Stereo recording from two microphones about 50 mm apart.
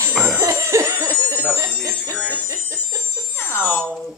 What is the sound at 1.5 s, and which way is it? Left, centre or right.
Speech, right.